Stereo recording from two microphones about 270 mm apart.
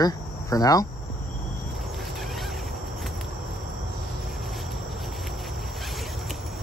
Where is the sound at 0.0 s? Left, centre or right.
Centre.